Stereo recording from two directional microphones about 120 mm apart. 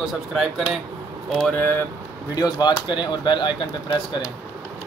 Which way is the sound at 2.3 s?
35° left (ahead or behind).